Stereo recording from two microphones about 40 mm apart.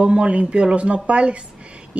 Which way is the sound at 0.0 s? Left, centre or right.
Right.